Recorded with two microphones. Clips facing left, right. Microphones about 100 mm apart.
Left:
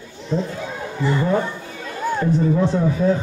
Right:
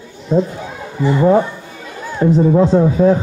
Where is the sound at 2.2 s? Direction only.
25° right (ahead or behind).